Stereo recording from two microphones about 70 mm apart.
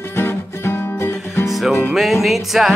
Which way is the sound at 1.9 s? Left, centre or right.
Centre.